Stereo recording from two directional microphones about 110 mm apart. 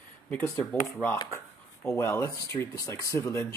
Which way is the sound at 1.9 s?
25° left (ahead or behind).